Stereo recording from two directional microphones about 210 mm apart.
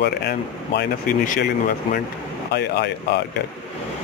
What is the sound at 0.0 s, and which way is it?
Speech, 50° left (ahead or behind).